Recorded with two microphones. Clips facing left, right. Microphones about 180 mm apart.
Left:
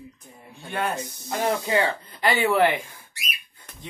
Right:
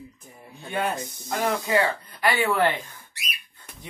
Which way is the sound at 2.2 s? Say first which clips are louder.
Left 2 dB; 20° left (ahead or behind).